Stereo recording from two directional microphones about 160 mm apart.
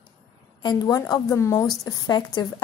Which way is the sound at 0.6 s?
25° left (ahead or behind).